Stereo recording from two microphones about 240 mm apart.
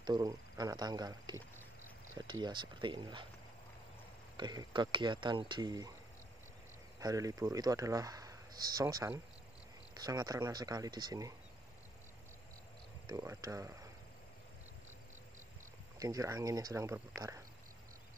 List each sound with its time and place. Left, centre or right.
0.0 s speech: centre
2.4 s speech: centre
4.4 s speech: centre
7.0 s speech: centre
13.0 s speech: centre
16.0 s speech: centre